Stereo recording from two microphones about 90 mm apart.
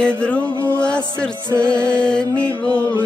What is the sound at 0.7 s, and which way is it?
Music, 10° left (ahead or behind).